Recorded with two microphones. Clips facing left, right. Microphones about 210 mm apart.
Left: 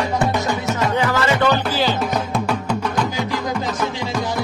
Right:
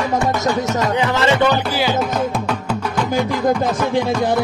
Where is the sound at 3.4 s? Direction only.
55° right (ahead or behind).